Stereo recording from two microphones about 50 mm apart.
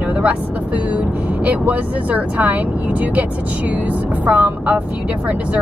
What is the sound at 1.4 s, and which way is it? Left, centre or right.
Speech, right.